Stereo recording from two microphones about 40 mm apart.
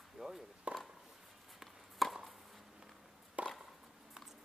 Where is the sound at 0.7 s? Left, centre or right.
Right.